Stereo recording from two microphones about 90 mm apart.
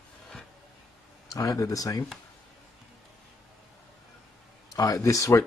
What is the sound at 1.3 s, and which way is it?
Speech, 40° left (ahead or behind).